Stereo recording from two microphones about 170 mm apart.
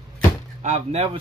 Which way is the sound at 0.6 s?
40° right (ahead or behind).